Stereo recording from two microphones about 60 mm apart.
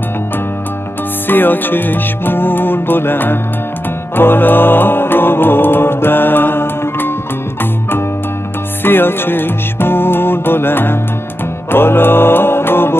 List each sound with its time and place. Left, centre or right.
1.2 s music: left
8.8 s music: left